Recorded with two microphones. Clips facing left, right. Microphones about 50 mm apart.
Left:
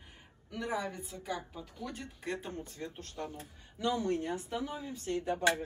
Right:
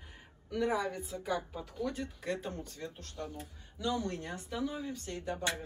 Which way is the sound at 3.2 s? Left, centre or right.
Left.